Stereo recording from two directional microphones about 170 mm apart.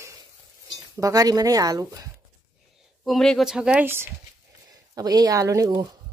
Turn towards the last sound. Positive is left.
turn(degrees=-20)  # may be behind; listen again after turning